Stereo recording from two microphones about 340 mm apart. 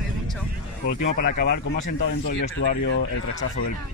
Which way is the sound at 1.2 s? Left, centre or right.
Left.